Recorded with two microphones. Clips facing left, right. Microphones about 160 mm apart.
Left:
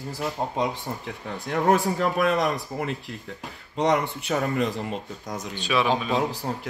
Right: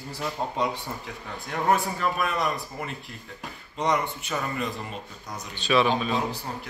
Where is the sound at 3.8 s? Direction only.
75° left (ahead or behind).